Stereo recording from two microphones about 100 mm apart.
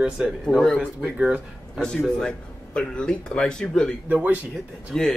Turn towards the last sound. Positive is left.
turn(degrees=5)  # may be behind; listen again after turning